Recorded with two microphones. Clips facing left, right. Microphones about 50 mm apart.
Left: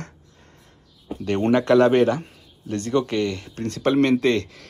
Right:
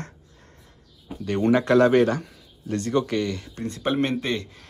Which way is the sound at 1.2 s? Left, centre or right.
Left.